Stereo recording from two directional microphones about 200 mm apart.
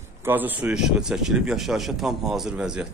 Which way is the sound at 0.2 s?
10° right (ahead or behind).